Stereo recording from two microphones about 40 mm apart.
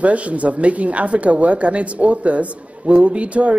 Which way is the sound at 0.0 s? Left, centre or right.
Right.